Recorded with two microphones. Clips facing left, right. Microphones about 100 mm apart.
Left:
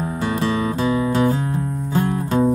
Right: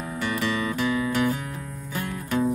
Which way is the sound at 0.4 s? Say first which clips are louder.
Left 5 dB; 30° left (ahead or behind).